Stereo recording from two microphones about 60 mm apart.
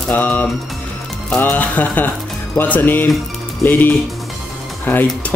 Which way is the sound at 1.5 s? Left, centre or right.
Left.